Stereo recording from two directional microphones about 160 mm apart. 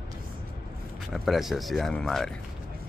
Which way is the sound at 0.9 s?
Centre (ahead or behind).